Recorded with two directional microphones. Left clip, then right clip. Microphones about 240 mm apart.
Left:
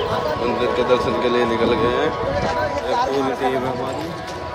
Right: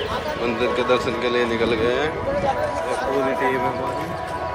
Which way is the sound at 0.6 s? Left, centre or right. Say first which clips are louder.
Left 1 dB; centre.